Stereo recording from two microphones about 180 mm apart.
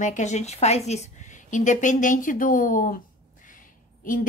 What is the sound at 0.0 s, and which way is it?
A woman's voice, 40° left (ahead or behind).